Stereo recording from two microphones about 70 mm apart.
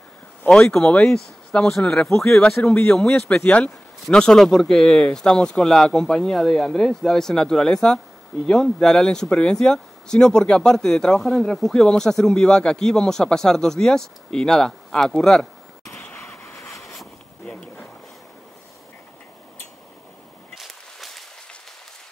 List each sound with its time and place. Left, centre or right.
0.5 s speech: centre
2.0 s speech: left
2.3 s speech: centre
16.5 s vehicle: left
20.5 s a sound: centre